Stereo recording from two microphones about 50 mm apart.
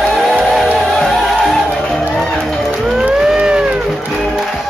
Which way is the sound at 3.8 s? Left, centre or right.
Centre.